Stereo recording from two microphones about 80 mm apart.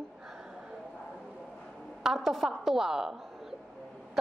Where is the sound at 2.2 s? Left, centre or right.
Centre.